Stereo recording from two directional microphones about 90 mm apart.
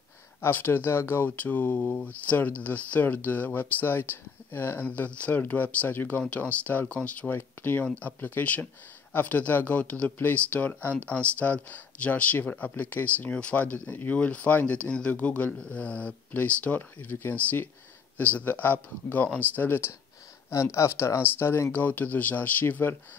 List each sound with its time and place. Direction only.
0.4 s speech: 20° left (ahead or behind)